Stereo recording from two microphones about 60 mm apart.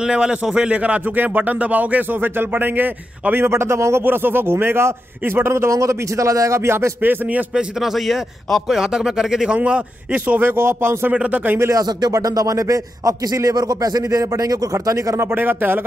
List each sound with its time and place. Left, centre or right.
0.0 s a man's voice: centre; by 4.0 s right
4.0 s a man's voice: right
7.0 s speech: right
7.5 s a man's voice: centre
8.7 s a man's voice: centre; by 11.1 s right
11.1 s speech: right
11.7 s a man's voice: right
15.1 s speech: right